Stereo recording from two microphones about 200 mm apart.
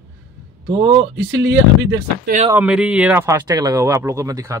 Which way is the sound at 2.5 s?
5° right (ahead or behind).